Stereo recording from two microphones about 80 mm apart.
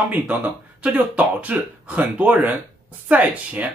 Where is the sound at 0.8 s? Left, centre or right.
Centre.